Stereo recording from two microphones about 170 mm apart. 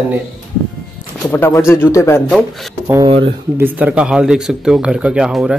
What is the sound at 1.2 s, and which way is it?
Speech, 15° left (ahead or behind).